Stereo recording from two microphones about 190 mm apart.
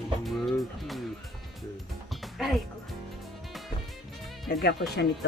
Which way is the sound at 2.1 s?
Centre (ahead or behind).